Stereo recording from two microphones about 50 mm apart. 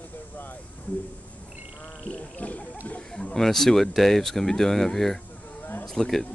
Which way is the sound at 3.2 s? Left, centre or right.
Centre.